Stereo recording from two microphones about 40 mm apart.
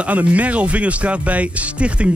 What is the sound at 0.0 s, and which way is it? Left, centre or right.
A man's voice, right.